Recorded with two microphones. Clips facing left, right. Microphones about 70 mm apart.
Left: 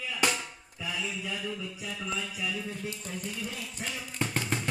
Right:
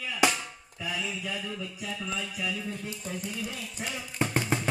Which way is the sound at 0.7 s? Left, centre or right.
Centre.